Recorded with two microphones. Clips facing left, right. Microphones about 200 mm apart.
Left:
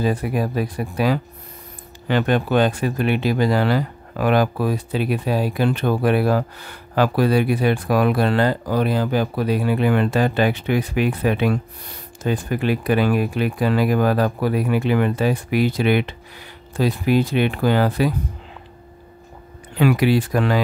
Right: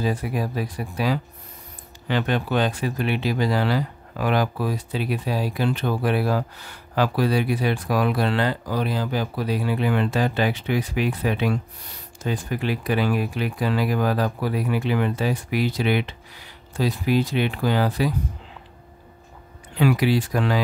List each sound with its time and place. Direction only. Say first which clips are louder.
0.0 s speech: left 4 dB; 55° left (ahead or behind)
19.8 s speech: left 3 dB; 60° left (ahead or behind)